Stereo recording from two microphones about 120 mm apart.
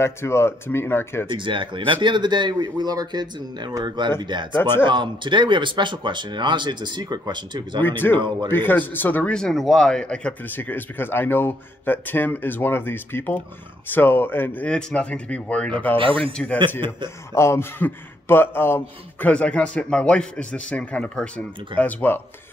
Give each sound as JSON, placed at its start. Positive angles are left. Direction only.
{"t": 0.0, "sound": "speech", "side_deg": 20}
{"t": 1.3, "sound": "speech", "side_deg": -45}
{"t": 4.6, "sound": "speech", "side_deg": 20}
{"t": 4.8, "sound": "speech", "side_deg": -40}
{"t": 7.8, "sound": "speech", "side_deg": 15}
{"t": 17.3, "sound": "speech", "side_deg": 20}